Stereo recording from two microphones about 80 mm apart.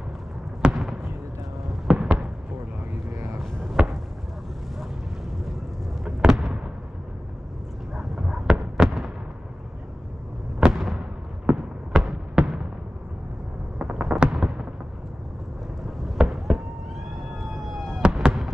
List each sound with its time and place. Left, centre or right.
0.7 s fireworks: centre
1.9 s basketball bounce: centre
3.7 s basketball bounce: centre
6.0 s a sound: centre
7.9 s fireworks: centre
10.6 s a sound: centre
13.7 s fireworks: centre
16.2 s fireworks: centre
17.4 s emergency vehicle: centre
18.0 s fireworks: centre